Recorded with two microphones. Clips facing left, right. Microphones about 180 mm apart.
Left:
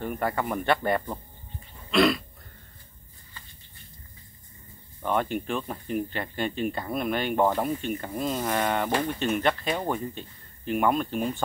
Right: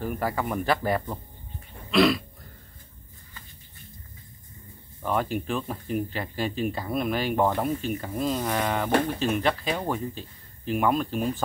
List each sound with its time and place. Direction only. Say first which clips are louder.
0.0 s speech: even; centre (ahead or behind)
5.0 s speech: even; centre (ahead or behind)